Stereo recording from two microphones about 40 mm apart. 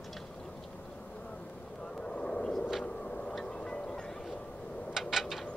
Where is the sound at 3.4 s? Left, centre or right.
Centre.